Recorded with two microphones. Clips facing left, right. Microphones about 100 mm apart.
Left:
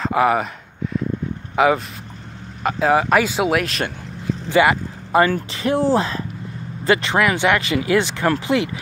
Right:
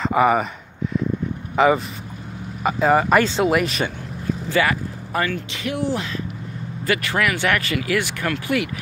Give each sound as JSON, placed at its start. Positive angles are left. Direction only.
{"t": 0.0, "sound": "speech", "side_deg": 0}
{"t": 1.6, "sound": "speech", "side_deg": 5}
{"t": 4.5, "sound": "speech", "side_deg": 20}